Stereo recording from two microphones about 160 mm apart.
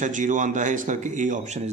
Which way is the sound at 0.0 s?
50° right (ahead or behind).